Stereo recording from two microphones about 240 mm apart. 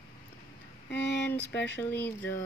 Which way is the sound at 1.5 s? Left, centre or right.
Left.